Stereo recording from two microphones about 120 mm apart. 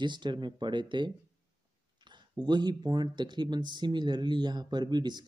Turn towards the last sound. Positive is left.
turn(degrees=-40)  # may be behind; listen again after turning